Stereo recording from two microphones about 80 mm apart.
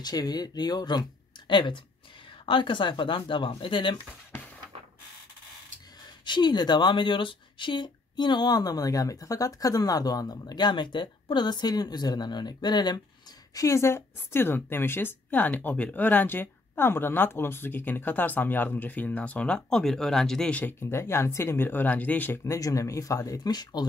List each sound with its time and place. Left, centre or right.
0.0 s speech: left
1.5 s speech: left
2.4 s a woman's voice: left
6.2 s speech: left
13.6 s a woman's voice: left; by 20.6 s centre
20.8 s a woman's voice: left
22.4 s speech: left